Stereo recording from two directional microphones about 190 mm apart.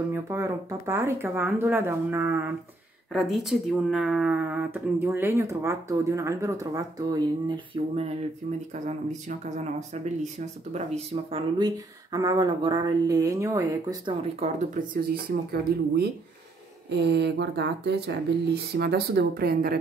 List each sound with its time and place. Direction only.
0.1 s speech: 15° right (ahead or behind)
3.1 s speech: centre (ahead or behind); by 8.1 s 30° right (ahead or behind)
8.7 s speech: 40° right (ahead or behind)
11.2 s speech: 25° right (ahead or behind)
14.2 s speech: 40° right (ahead or behind)